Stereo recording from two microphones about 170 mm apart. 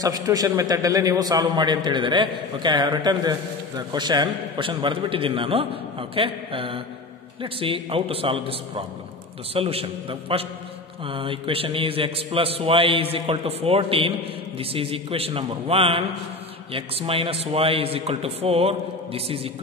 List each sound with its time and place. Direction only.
0.0 s a man's voice: 20° right (ahead or behind)